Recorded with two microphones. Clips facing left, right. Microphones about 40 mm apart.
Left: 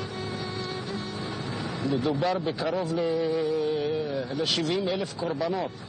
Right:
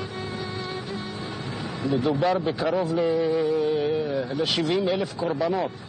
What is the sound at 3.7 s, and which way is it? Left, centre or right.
Carnatic music, centre.